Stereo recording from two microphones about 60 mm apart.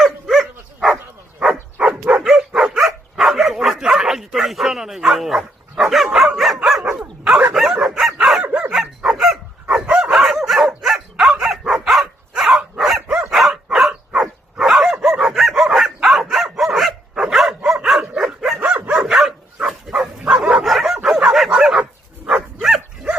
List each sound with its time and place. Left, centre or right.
0.0 s dog: centre
7.5 s bow-wow: centre
8.2 s dog: centre
8.7 s dog: centre
15.3 s bow-wow: centre
16.5 s dog: centre
18.6 s dog: centre
19.0 s dog: centre; by 20.6 s right
20.6 s bow-wow: centre
22.2 s dog: centre